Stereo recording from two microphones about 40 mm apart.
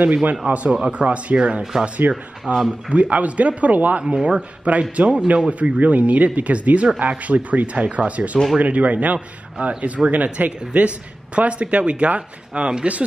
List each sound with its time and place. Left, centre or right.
0.0 s speech: right
1.6 s speech: centre
2.5 s speech: right
4.0 s speech: right